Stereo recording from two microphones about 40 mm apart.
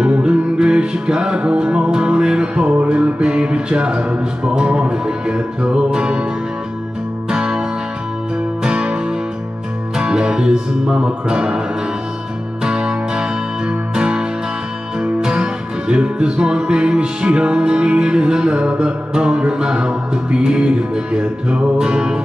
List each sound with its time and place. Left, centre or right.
0.0 s music: right
7.2 s music: centre
8.6 s music: right
12.6 s music: centre